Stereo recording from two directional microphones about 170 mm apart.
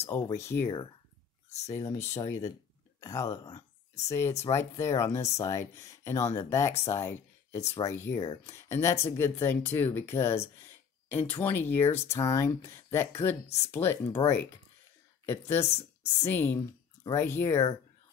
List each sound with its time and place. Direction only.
0.0 s speech: 15° left (ahead or behind)
0.7 s speech: 25° left (ahead or behind)
15.2 s speech: 15° left (ahead or behind)